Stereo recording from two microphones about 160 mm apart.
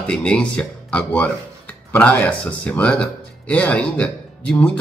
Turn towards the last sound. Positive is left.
turn(degrees=10)  # may be behind; listen again after turning